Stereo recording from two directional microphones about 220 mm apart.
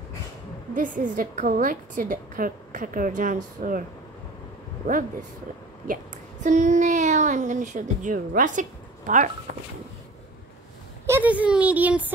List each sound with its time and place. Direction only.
0.7 s a woman's voice: 35° right (ahead or behind)
4.8 s a woman's voice: 40° right (ahead or behind)
6.4 s a woman's voice: 35° right (ahead or behind)
11.1 s speech: 10° right (ahead or behind)